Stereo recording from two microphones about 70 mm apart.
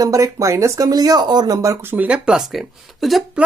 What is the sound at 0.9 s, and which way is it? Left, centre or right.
Speech, right.